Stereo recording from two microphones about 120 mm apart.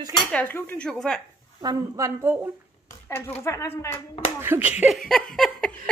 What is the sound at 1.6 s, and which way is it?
Speech, 30° right (ahead or behind).